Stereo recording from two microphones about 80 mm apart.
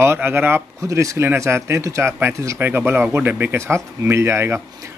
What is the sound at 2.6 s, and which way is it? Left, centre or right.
Speech, right.